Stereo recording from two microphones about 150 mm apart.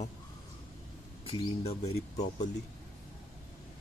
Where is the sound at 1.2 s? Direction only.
40° left (ahead or behind).